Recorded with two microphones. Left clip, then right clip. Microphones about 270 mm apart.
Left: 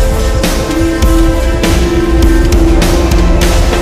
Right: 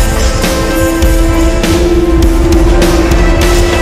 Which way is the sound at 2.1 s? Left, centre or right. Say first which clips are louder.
Right 1 dB; centre.